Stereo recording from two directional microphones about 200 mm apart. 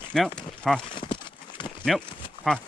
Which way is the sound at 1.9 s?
Centre (ahead or behind).